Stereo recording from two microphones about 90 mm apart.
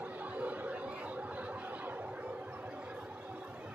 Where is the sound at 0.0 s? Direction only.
15° right (ahead or behind).